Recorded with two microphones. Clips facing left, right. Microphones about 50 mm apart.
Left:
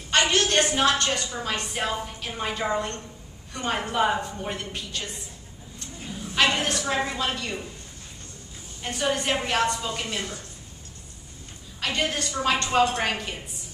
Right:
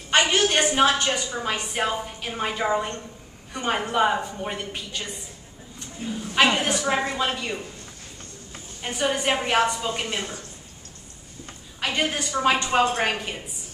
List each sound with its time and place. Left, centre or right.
0.1 s a woman's voice: centre
8.8 s a woman's voice: centre
11.8 s a woman's voice: centre